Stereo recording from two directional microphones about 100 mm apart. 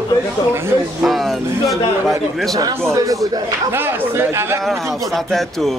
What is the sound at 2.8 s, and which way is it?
Speech, 35° right (ahead or behind).